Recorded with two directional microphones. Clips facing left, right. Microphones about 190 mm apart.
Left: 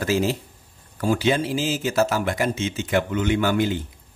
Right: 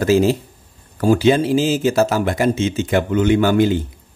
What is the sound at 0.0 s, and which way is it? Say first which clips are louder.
Speech: right 8 dB; 30° right (ahead or behind).